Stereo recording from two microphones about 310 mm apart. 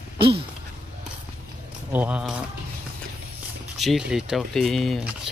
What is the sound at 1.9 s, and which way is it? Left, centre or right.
Speech, centre.